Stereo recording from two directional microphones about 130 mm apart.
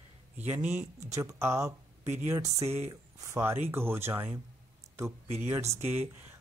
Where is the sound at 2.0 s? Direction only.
65° right (ahead or behind).